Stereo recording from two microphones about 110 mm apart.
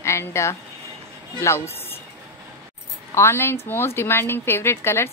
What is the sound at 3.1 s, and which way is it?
A woman's voice, 25° left (ahead or behind).